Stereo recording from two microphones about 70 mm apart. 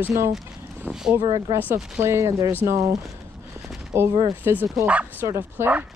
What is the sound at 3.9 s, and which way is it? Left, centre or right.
Speech, right.